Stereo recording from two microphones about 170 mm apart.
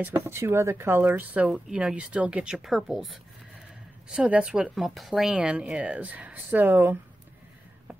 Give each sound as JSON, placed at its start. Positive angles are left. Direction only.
{"t": 0.0, "sound": "speech", "side_deg": -15}